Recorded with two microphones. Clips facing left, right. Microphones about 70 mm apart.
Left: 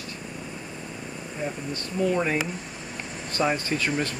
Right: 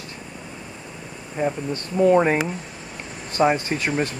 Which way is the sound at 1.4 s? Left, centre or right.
Right.